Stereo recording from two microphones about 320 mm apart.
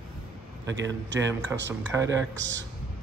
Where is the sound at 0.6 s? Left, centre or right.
Right.